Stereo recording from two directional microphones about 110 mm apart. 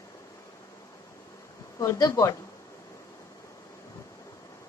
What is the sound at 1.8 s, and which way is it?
Speech, 30° left (ahead or behind).